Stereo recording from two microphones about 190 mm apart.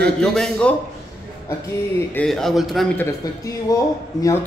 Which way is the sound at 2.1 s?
Centre (ahead or behind).